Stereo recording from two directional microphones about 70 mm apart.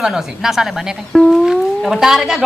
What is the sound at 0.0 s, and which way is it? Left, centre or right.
A woman's voice, centre.